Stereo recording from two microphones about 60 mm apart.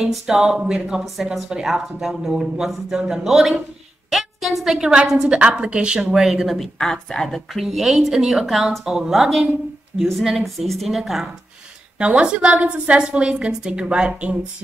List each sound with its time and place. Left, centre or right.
0.0 s a woman's voice: centre
10.6 s speech: centre
12.0 s a woman's voice: centre